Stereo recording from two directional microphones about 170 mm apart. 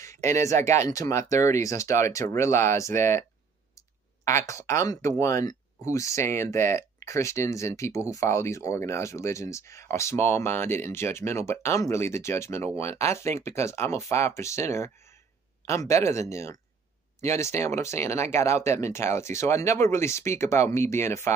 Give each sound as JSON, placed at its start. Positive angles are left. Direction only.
{"t": 0.0, "sound": "speech", "side_deg": 15}